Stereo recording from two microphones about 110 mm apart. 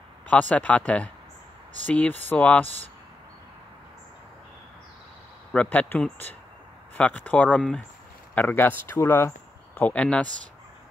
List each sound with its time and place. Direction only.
0.3 s speech: 10° left (ahead or behind)
5.5 s speech: 10° left (ahead or behind)